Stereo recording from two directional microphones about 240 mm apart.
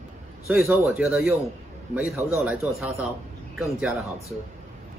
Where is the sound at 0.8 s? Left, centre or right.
Centre.